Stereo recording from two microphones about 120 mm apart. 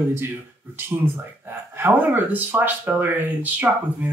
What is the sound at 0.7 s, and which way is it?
Speech, 15° right (ahead or behind).